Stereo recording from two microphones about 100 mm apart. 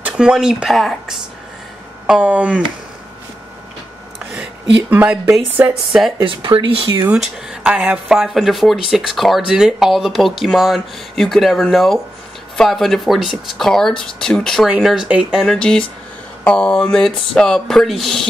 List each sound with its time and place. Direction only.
0.0 s speech: 10° right (ahead or behind)
2.0 s speech: 15° right (ahead or behind)
4.3 s speech: 15° right (ahead or behind)
5.9 s speech: centre (ahead or behind)
6.2 s speech: 60° right (ahead or behind)
7.2 s speech: 10° right (ahead or behind)
15.4 s speech: 5° left (ahead or behind)